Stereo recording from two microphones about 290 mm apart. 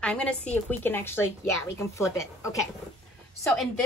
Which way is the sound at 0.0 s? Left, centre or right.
Centre.